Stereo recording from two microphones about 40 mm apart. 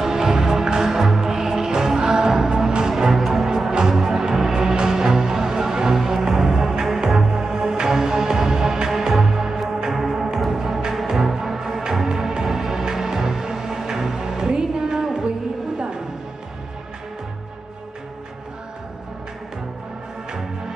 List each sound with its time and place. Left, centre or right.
0.0 s music: centre
2.9 s music: centre